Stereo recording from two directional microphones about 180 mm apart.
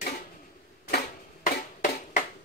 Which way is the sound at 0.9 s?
55° left (ahead or behind).